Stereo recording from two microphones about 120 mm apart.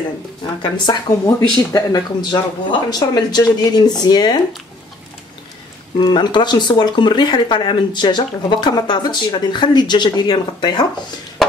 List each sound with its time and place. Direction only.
0.6 s speech: 35° left (ahead or behind)
5.9 s speech: 40° left (ahead or behind)